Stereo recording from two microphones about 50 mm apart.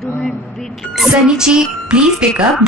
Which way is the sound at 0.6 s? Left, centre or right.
Centre.